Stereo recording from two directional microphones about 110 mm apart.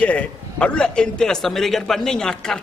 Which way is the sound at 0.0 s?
10° left (ahead or behind).